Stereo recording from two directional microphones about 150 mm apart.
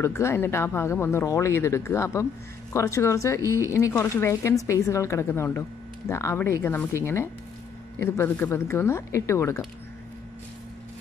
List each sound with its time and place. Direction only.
0.0 s speech: 15° left (ahead or behind)
8.0 s speech: 15° left (ahead or behind)